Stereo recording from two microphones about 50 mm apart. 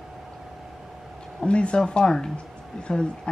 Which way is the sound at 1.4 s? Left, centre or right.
Left.